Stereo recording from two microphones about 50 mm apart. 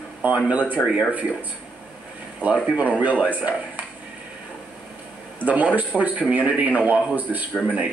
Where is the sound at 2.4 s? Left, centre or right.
Right.